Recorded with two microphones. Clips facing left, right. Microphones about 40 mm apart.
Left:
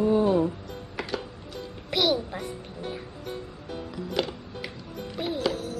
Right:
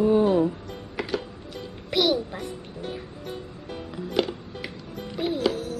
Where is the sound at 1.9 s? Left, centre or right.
Centre.